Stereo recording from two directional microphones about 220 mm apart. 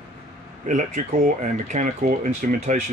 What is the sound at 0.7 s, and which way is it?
Speech, 35° right (ahead or behind).